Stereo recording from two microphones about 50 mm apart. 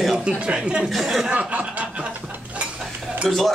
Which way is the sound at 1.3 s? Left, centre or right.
Right.